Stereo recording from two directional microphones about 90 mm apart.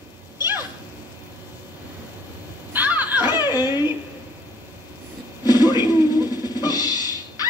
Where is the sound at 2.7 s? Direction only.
20° right (ahead or behind).